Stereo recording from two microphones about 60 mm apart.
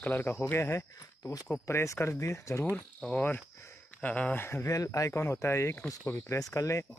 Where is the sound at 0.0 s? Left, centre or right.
Left.